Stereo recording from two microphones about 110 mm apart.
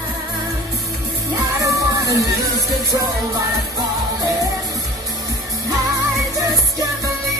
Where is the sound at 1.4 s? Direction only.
30° right (ahead or behind).